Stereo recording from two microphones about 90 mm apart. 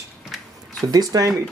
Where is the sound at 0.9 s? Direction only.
45° right (ahead or behind).